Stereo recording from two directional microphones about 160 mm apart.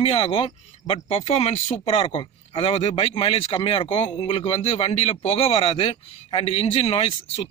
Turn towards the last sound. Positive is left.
turn(degrees=35)  # may be behind; listen again after turning